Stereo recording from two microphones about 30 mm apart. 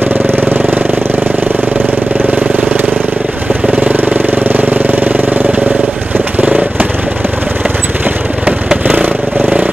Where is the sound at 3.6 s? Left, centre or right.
Right.